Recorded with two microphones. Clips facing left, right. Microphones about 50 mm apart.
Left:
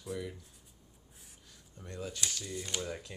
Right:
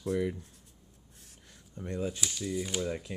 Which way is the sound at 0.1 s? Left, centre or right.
Right.